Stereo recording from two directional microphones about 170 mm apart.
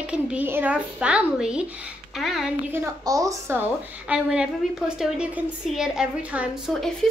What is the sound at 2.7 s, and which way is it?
A woman's voice, 20° right (ahead or behind).